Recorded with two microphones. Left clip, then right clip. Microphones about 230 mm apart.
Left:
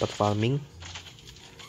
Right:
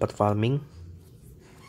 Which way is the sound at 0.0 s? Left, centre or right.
Centre.